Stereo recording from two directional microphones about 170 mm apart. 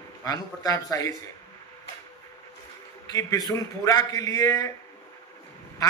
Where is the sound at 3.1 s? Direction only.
20° left (ahead or behind).